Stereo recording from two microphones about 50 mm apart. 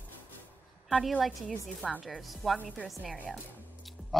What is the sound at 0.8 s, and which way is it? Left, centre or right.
A woman's voice, centre.